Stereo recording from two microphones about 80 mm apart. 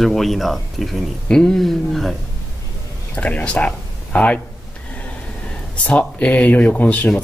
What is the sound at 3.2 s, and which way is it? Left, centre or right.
Speech, centre.